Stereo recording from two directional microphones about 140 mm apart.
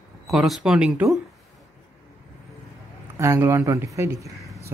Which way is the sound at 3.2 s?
20° right (ahead or behind).